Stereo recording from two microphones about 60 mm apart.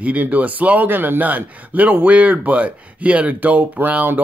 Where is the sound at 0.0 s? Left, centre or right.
Right.